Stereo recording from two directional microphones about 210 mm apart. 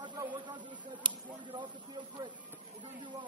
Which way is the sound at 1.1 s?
20° right (ahead or behind).